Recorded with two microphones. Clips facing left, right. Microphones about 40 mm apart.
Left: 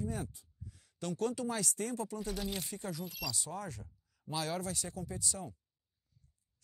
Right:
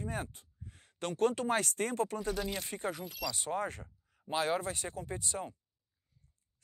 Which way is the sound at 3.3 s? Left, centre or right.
Right.